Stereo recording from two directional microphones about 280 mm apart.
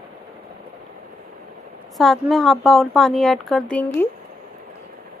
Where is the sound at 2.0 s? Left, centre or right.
Centre.